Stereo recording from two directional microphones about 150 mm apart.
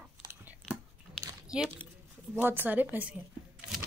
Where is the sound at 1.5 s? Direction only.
5° right (ahead or behind).